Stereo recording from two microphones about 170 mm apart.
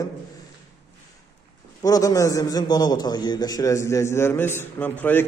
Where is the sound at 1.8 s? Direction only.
20° left (ahead or behind).